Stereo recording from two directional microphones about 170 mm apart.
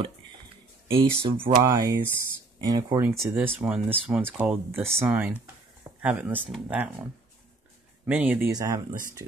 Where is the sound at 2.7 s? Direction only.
20° right (ahead or behind).